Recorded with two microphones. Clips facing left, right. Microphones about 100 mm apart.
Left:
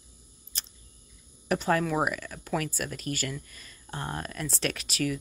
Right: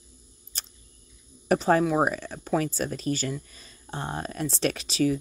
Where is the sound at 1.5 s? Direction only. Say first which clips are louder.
Right 5 dB; 35° right (ahead or behind).